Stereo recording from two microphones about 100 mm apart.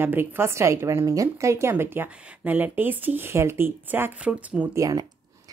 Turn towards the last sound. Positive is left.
turn(degrees=-40)  # may be behind; listen again after turning